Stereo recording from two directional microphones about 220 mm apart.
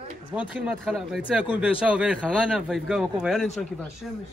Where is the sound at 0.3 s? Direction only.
5° right (ahead or behind).